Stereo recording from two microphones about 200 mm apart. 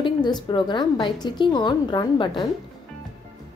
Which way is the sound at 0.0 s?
20° left (ahead or behind).